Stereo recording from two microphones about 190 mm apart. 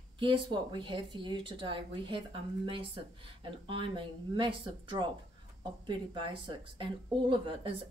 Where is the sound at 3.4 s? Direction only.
25° right (ahead or behind).